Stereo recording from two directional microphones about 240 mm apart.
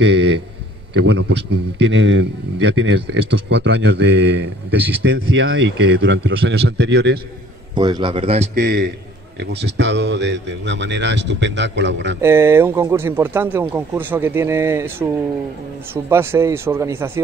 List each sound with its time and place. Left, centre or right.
0.0 s a sound: right
0.9 s speech: right
7.7 s a man's voice: centre; by 12.2 s right
12.2 s speech: centre